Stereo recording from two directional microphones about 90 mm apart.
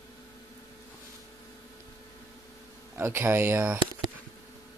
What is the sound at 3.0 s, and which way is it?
Speech, 30° right (ahead or behind).